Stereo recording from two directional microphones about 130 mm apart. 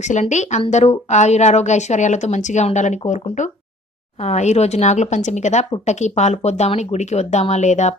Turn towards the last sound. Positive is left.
turn(degrees=65)  # may be behind; listen again after turning